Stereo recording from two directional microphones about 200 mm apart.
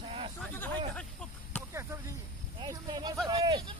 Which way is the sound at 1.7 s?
15° right (ahead or behind).